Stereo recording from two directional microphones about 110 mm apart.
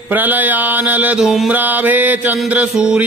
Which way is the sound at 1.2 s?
Centre (ahead or behind).